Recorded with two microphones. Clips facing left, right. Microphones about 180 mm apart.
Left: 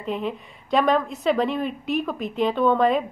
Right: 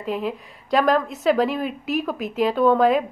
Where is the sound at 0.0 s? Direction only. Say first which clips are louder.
Right 1 dB; 5° right (ahead or behind).